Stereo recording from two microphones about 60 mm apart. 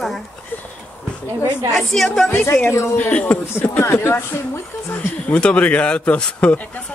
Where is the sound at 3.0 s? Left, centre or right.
Left.